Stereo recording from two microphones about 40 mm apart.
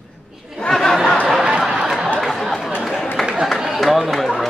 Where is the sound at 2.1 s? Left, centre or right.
Centre.